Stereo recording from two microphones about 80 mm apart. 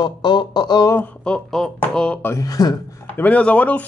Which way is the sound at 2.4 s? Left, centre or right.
Left.